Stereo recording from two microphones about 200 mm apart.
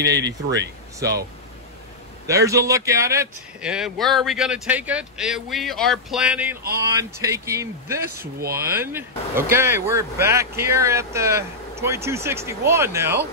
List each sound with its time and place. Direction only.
0.0 s speech: 60° right (ahead or behind)
2.2 s speech: 15° right (ahead or behind)
3.6 s speech: 5° right (ahead or behind)